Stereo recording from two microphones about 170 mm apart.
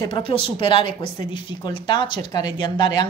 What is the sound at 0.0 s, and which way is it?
A woman's voice, 30° left (ahead or behind).